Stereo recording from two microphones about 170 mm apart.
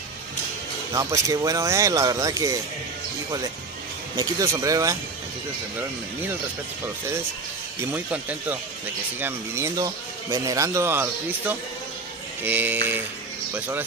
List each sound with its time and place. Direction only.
0.9 s speech: 20° right (ahead or behind)
4.2 s speech: 20° right (ahead or behind)
7.8 s speech: 10° right (ahead or behind)